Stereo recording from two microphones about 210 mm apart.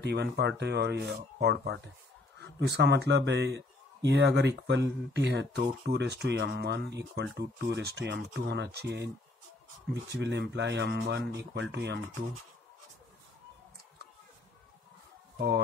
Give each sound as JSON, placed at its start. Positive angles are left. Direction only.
{"t": 0.0, "sound": "speech", "side_deg": -55}
{"t": 10.1, "sound": "speech", "side_deg": -55}
{"t": 15.3, "sound": "speech", "side_deg": -50}